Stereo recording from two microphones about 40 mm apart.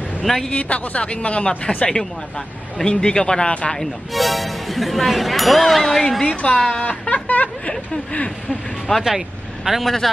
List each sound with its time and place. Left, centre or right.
0.2 s speech: centre
0.5 s a woman's voice: left
2.8 s speech: centre
4.1 s speech: centre
6.2 s speech: left
6.8 s snicker: left
8.5 s speech: centre
9.7 s speech: centre